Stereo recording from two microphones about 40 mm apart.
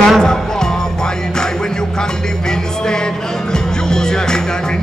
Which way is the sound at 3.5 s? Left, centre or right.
Centre.